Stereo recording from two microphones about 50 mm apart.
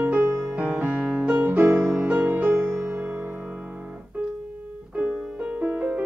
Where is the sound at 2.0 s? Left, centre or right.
Right.